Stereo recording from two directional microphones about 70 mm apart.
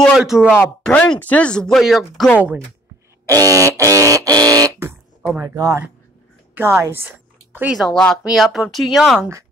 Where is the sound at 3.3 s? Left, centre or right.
Right.